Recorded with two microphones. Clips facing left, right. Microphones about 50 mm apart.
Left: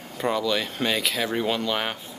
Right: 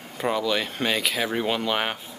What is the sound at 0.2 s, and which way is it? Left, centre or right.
Speech, centre.